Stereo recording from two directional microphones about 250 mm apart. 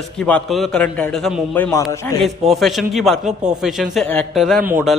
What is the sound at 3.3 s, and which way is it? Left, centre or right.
Speech, right.